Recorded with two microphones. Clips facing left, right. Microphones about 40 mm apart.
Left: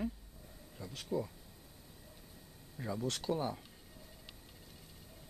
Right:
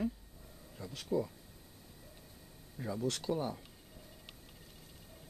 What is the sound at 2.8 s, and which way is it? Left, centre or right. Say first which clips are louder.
Speech: right 2 dB; centre.